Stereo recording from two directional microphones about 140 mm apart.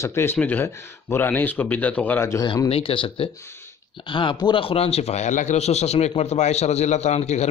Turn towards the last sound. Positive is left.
turn(degrees=55)  # may be behind; listen again after turning